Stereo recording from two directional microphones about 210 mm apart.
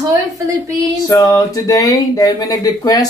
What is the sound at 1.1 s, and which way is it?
Speech, 15° left (ahead or behind).